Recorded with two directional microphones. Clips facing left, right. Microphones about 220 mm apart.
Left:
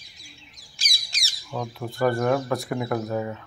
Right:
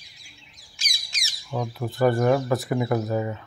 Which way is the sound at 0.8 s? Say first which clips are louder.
Left 1 dB; 35° left (ahead or behind).